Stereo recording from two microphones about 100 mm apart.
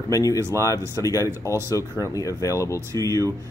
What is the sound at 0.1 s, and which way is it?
Speech, 35° left (ahead or behind).